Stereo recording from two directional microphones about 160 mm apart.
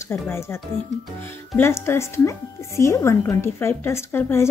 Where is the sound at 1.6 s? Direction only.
15° left (ahead or behind).